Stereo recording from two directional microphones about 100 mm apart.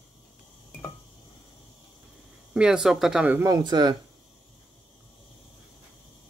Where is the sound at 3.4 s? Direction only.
40° right (ahead or behind).